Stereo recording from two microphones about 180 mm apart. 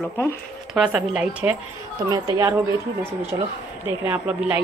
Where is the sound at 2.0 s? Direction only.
20° right (ahead or behind).